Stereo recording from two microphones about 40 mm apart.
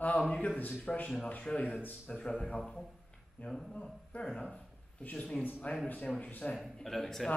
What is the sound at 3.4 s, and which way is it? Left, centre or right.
A man's voice, left.